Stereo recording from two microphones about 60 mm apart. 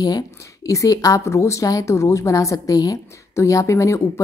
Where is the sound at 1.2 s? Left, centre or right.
Left.